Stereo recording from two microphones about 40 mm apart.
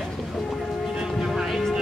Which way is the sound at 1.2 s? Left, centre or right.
Centre.